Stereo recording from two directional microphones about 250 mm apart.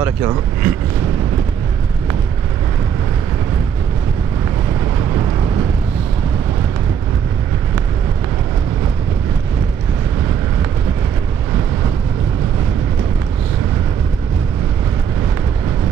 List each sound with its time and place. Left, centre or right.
0.0 s speech: centre